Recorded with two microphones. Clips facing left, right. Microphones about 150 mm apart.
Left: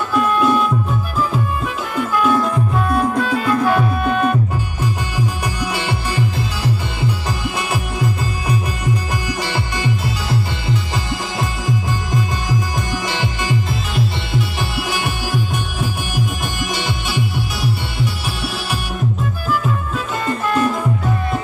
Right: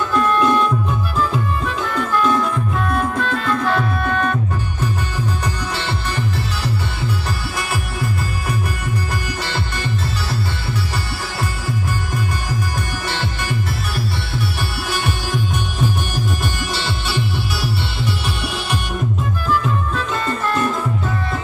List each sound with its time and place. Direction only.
0.1 s music: 10° left (ahead or behind)
16.5 s music: 15° left (ahead or behind)